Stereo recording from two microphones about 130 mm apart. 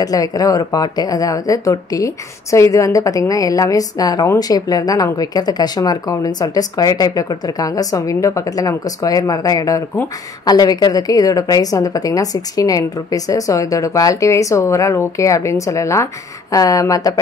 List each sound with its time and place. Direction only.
0.0 s speech: 30° left (ahead or behind)